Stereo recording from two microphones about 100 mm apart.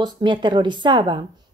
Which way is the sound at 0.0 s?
50° right (ahead or behind).